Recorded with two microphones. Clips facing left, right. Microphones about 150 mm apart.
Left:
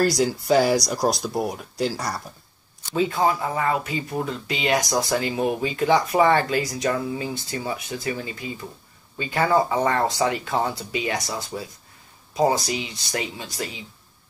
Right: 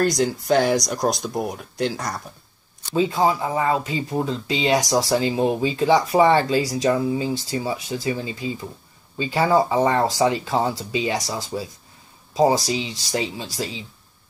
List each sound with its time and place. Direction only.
0.0 s speech: 5° left (ahead or behind)
2.9 s speech: 15° right (ahead or behind)
9.3 s speech: 15° right (ahead or behind)
12.6 s speech: 25° right (ahead or behind)